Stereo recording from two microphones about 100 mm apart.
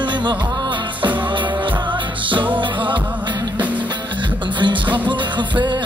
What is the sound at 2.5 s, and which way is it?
Music, 55° right (ahead or behind).